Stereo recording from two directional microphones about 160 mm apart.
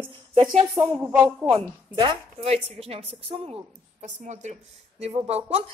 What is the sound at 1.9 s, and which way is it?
A woman's voice, 35° right (ahead or behind).